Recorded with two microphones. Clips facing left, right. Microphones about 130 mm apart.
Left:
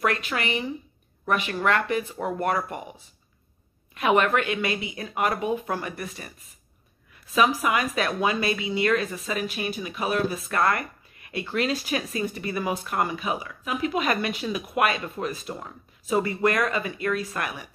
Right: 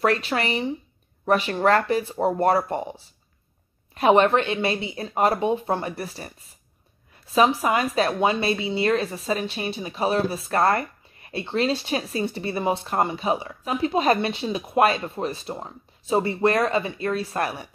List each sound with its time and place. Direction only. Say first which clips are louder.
0.0 s a woman's voice: right 4 dB; 30° right (ahead or behind)